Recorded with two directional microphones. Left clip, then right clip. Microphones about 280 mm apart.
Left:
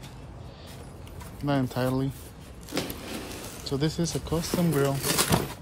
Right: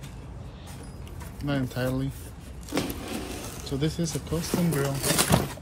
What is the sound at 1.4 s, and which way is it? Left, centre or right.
Speech, centre.